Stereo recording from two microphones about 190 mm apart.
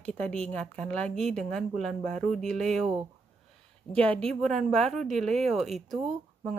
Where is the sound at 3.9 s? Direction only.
5° left (ahead or behind).